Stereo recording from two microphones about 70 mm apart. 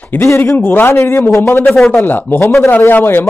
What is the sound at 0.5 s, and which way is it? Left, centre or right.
A man's voice, left.